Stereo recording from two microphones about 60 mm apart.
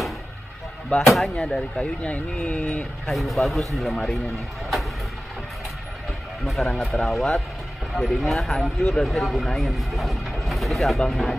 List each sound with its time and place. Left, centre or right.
0.8 s speech: centre
2.4 s speech: centre
3.1 s speech: centre
6.4 s speech: centre